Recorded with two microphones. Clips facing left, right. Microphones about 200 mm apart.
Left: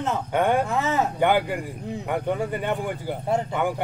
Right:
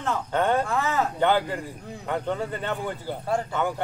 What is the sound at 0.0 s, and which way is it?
Speech, 15° left (ahead or behind).